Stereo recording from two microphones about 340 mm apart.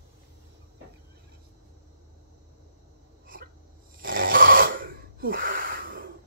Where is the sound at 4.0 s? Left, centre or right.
Right.